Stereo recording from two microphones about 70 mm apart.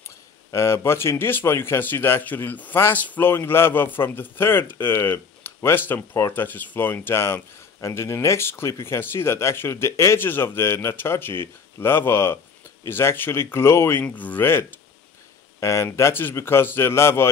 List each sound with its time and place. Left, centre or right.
0.5 s speech: left
14.0 s speech: left